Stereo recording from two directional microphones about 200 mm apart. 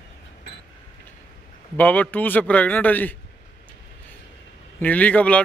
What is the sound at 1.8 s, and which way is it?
A man's voice, 10° left (ahead or behind).